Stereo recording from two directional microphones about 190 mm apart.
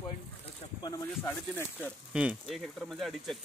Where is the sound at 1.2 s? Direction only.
10° left (ahead or behind).